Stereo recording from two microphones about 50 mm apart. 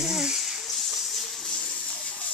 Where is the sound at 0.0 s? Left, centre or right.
Centre.